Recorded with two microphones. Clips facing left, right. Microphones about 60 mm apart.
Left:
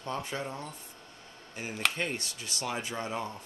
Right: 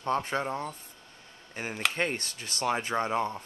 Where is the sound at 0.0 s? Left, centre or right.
Right.